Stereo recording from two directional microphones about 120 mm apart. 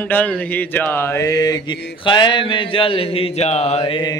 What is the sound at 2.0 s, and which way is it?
Speech, 40° left (ahead or behind).